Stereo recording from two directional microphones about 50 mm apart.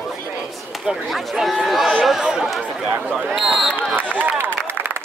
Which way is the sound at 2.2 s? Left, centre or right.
Centre.